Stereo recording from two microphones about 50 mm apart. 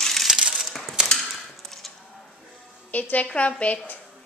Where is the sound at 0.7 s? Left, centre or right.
Centre.